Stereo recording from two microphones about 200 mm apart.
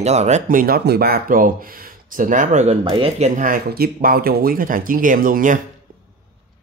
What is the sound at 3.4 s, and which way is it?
Speech, 45° right (ahead or behind).